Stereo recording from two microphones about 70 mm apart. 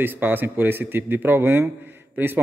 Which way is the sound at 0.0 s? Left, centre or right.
Right.